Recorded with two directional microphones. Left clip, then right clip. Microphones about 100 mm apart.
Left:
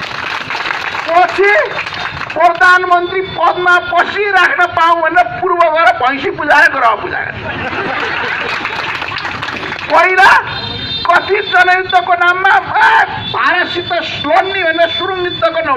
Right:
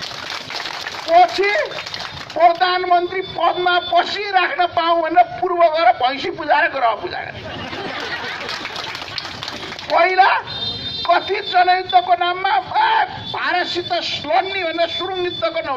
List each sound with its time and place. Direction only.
1.1 s a sound: 30° right (ahead or behind)
2.3 s a man's voice: 30° right (ahead or behind)
9.9 s a man's voice: 35° right (ahead or behind)